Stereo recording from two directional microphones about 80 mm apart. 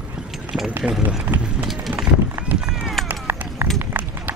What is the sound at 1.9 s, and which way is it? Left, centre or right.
Run, right.